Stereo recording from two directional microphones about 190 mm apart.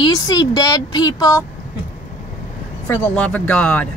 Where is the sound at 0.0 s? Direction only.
20° left (ahead or behind).